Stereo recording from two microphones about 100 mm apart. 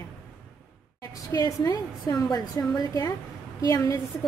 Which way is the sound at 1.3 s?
35° left (ahead or behind).